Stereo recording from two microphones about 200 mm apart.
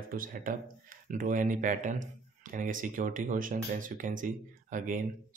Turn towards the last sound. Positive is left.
turn(degrees=-40)  # may be behind; listen again after turning